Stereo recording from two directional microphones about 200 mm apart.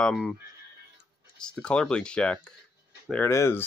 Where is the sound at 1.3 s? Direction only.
5° left (ahead or behind).